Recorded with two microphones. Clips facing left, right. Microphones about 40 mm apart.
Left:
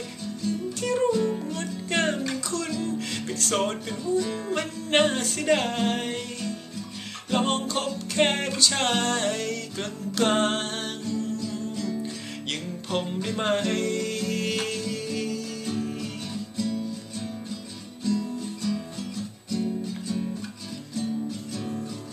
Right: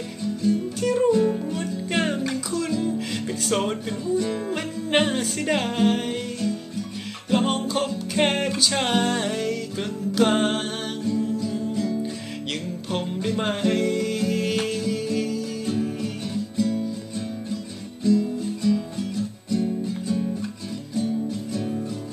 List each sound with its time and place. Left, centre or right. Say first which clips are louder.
0.2 s music: right 7 dB; centre
18.0 s music: right 6 dB; centre
21.5 s music: right 5 dB; centre